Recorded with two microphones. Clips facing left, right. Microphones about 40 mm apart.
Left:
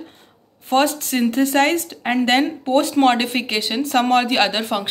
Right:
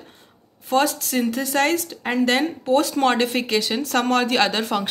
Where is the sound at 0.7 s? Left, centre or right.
Left.